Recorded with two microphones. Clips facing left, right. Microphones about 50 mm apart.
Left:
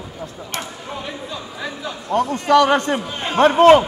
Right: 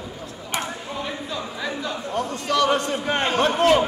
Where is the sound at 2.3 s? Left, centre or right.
Left.